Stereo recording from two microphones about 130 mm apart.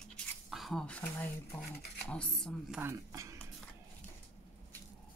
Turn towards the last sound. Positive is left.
turn(degrees=-25)  # may be behind; listen again after turning